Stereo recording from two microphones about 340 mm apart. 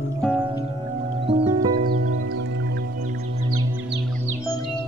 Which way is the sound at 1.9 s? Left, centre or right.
Right.